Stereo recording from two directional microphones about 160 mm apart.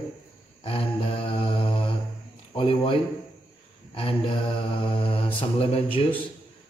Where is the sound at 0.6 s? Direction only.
35° left (ahead or behind).